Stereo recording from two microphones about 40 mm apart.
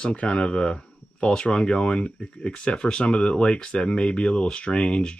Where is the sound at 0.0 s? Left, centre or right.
Left.